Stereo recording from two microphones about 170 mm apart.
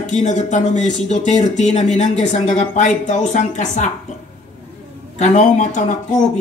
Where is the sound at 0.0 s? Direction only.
45° left (ahead or behind).